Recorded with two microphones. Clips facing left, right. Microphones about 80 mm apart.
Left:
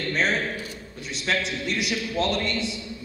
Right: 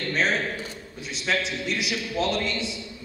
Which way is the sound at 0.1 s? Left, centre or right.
Centre.